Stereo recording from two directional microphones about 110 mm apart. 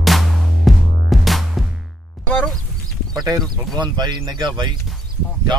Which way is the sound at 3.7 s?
40° right (ahead or behind).